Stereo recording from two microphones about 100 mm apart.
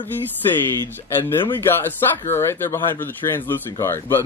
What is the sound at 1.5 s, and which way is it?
Speech, 20° left (ahead or behind).